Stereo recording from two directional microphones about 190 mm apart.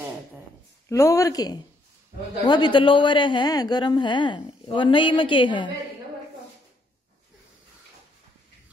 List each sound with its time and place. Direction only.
0.8 s a woman's voice: 15° left (ahead or behind)